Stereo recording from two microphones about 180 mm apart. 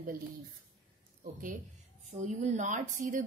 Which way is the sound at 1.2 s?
50° right (ahead or behind).